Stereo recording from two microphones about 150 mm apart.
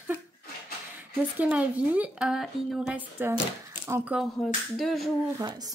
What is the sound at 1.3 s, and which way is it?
Speech, 10° right (ahead or behind).